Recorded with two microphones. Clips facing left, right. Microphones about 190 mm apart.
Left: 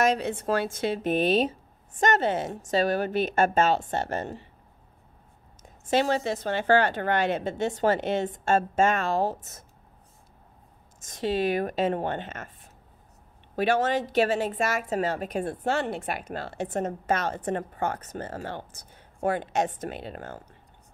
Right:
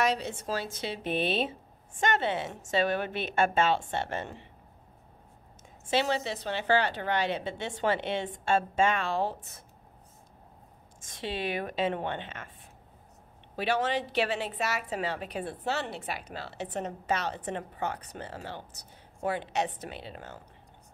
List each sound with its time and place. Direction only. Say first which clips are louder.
0.0 s speech: left 5 dB; 55° left (ahead or behind)
5.6 s a woman's voice: left 4 dB; 45° left (ahead or behind)
11.0 s a woman's voice: left 8 dB; 45° left (ahead or behind)
13.6 s a woman's voice: left 5 dB; 45° left (ahead or behind)